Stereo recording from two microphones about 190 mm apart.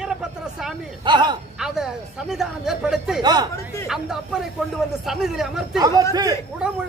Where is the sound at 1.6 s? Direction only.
Centre (ahead or behind).